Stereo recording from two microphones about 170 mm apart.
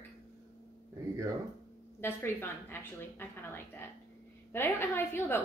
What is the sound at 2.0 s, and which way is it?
A woman's voice, 15° left (ahead or behind).